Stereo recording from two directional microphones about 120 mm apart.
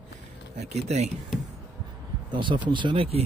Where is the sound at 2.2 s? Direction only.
40° right (ahead or behind).